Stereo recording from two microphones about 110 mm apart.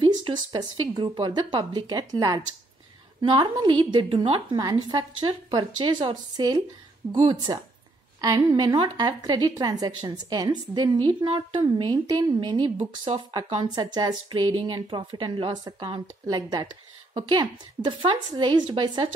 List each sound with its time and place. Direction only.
0.0 s speech: 45° right (ahead or behind)
8.2 s a woman's voice: 35° right (ahead or behind); by 11.6 s 55° right (ahead or behind)
11.6 s a woman's voice: 40° right (ahead or behind)
13.7 s speech: 40° right (ahead or behind)
16.3 s a woman's voice: 35° right (ahead or behind)